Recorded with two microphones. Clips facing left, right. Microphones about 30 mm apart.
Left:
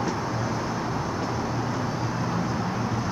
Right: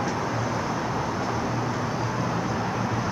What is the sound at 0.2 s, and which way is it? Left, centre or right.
Vehicle, right.